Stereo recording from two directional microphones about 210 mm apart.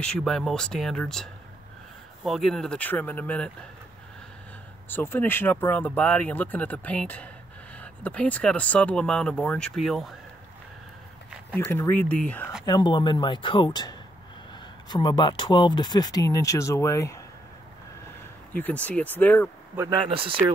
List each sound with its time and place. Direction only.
0.0 s speech: 5° left (ahead or behind)
4.8 s speech: 10° left (ahead or behind)
11.5 s speech: 10° left (ahead or behind)
12.6 s speech: 20° left (ahead or behind)
18.5 s speech: 5° left (ahead or behind)
19.7 s a man's voice: 10° right (ahead or behind)
20.0 s speech: 25° right (ahead or behind)